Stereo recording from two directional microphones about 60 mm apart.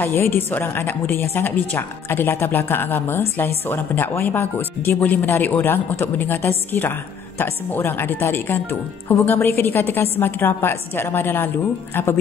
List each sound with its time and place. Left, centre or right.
0.0 s a woman's voice: left